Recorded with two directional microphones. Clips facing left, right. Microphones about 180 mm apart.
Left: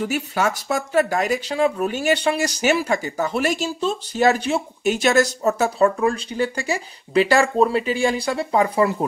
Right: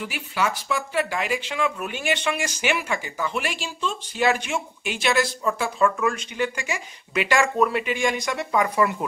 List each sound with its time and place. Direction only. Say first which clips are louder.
0.0 s speech: left 5 dB; 45° left (ahead or behind)